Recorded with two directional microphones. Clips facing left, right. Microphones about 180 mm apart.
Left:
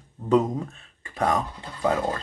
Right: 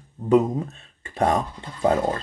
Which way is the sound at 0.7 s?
25° right (ahead or behind).